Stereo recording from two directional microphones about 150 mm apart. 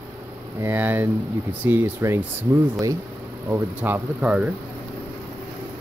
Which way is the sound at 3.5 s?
10° right (ahead or behind).